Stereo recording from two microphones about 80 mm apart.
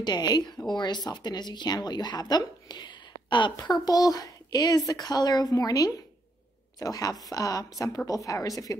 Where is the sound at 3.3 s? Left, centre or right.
Left.